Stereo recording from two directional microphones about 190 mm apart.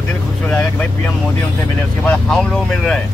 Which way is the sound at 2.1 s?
Centre (ahead or behind).